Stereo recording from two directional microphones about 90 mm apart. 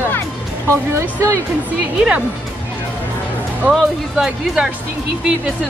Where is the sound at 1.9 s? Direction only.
10° right (ahead or behind).